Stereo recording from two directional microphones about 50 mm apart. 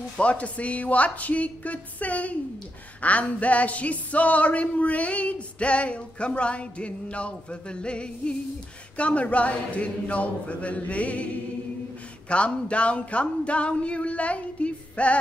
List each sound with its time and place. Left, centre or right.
0.2 s speech: left
12.3 s speech: left